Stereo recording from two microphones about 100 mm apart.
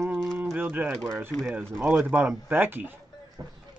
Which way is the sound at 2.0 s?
20° right (ahead or behind).